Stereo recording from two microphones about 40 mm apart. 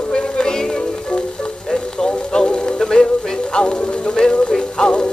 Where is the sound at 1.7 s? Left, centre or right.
Centre.